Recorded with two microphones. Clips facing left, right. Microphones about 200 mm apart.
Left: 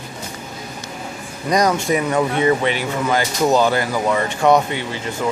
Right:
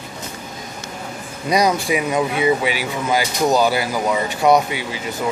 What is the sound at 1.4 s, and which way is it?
Speech, 10° right (ahead or behind).